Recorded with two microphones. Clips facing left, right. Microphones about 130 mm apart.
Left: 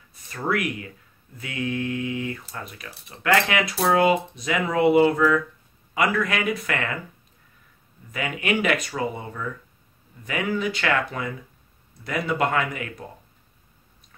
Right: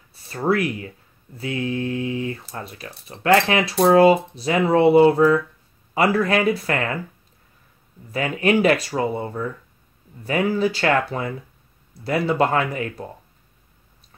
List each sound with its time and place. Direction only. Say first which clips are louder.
0.1 s speech: right 5 dB; 30° right (ahead or behind)
8.1 s speech: right 6 dB; 35° right (ahead or behind)